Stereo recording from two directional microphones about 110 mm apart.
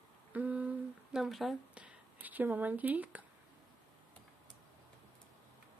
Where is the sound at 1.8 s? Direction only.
15° right (ahead or behind).